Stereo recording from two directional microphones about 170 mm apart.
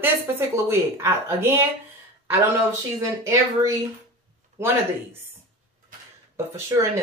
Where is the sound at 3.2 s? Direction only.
20° right (ahead or behind).